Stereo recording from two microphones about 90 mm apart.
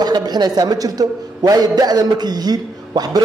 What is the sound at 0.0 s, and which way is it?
A man's voice, 50° right (ahead or behind).